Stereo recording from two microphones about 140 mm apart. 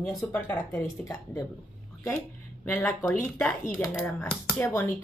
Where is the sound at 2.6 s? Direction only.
15° left (ahead or behind).